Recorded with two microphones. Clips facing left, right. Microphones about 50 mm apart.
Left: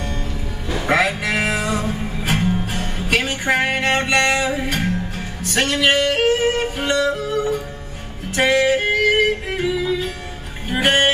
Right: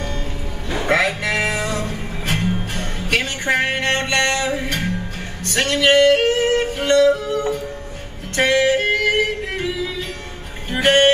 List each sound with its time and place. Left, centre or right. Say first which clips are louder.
0.8 s music: even; centre
5.4 s yodeling: even; centre
10.7 s music: right 2 dB; centre